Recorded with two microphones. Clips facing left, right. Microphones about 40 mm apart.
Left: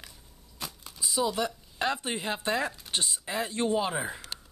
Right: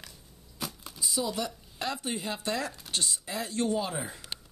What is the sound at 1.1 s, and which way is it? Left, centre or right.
Speech, centre.